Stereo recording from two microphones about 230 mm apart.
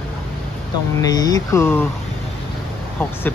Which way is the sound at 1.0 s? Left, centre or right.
Centre.